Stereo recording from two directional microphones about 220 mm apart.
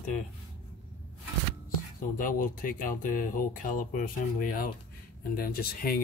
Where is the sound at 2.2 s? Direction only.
40° left (ahead or behind).